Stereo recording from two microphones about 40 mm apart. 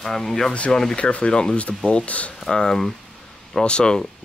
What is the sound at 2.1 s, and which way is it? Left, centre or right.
Speech, left.